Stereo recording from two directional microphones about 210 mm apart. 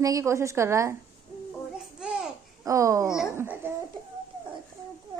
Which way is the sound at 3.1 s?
5° right (ahead or behind).